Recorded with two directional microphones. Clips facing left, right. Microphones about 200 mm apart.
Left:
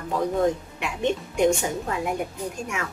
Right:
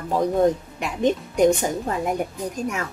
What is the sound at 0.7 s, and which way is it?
Speech, 40° right (ahead or behind).